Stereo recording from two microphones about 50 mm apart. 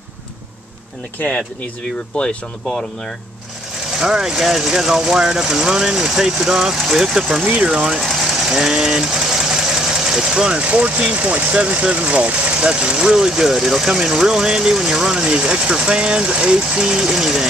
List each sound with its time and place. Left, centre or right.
4.0 s speech: centre
7.4 s speech: right
8.0 s sewing machine: centre
10.7 s speech: right; by 17.5 s centre